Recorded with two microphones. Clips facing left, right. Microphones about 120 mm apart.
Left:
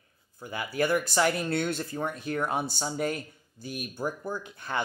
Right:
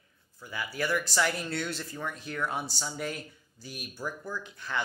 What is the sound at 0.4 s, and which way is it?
Speech, 50° left (ahead or behind).